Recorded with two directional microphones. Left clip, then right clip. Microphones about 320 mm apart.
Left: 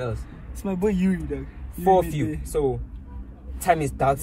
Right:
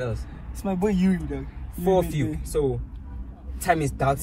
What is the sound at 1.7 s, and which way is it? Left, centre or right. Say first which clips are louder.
Speech: left 3 dB; centre.